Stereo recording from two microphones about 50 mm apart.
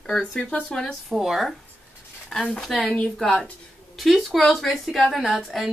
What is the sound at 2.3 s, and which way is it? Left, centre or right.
Speech, centre.